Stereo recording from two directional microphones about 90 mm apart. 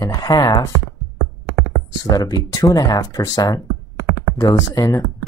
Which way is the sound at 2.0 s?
45° left (ahead or behind).